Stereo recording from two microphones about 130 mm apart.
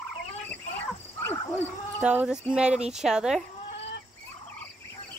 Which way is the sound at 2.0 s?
10° right (ahead or behind).